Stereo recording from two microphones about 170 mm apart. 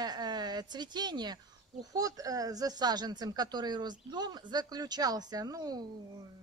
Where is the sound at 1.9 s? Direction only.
20° right (ahead or behind).